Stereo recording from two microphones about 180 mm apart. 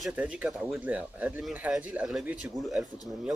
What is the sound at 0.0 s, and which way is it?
Speech, 10° right (ahead or behind).